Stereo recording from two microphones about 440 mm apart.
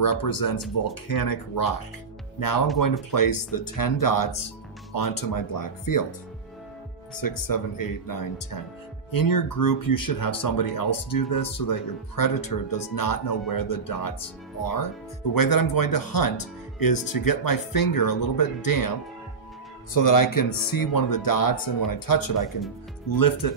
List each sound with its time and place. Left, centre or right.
0.0 s speech: left
2.8 s speech: left
7.2 s speech: left